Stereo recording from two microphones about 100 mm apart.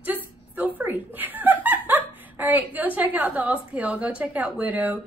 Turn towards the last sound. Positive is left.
turn(degrees=-15)  # may be behind; listen again after turning